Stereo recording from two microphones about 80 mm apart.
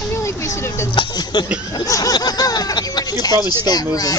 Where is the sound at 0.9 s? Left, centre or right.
Left.